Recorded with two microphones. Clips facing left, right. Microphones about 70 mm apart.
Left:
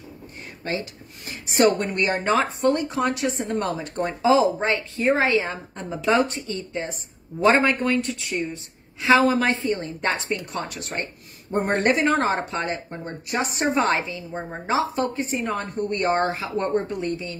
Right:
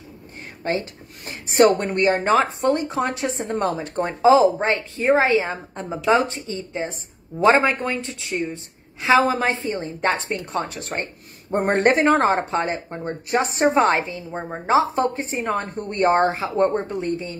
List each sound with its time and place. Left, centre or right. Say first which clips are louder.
0.7 s a woman's voice: right 4 dB; right
15.9 s speech: right 5 dB; right